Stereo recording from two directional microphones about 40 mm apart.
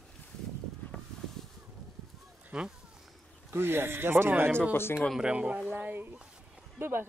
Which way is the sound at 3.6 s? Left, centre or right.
Right.